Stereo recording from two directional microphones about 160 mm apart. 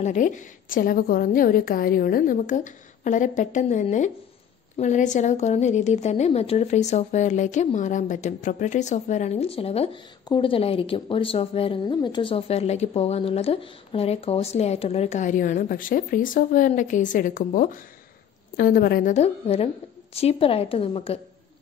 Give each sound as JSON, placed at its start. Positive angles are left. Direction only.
{"t": 0.0, "sound": "a woman's voice", "side_deg": 50}
{"t": 18.6, "sound": "a woman's voice", "side_deg": 70}
{"t": 19.1, "sound": "a woman's voice", "side_deg": 40}